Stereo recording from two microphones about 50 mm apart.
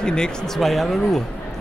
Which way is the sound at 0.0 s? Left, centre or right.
Centre.